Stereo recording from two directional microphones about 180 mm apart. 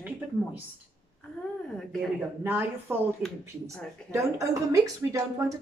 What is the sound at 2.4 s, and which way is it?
Speech, 10° right (ahead or behind).